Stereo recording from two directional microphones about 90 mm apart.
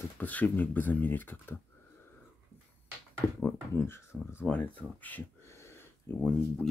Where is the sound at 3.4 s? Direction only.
25° left (ahead or behind).